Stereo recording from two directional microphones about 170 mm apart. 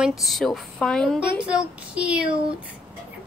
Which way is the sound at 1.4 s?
5° right (ahead or behind).